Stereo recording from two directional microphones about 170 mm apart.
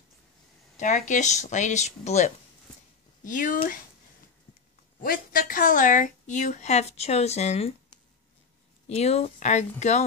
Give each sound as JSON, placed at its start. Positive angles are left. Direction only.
{"t": 0.7, "sound": "a woman's voice", "side_deg": 45}
{"t": 5.0, "sound": "a woman's voice", "side_deg": 55}
{"t": 8.8, "sound": "a woman's voice", "side_deg": 40}